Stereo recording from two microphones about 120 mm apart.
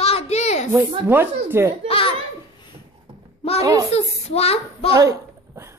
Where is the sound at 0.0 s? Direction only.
60° left (ahead or behind).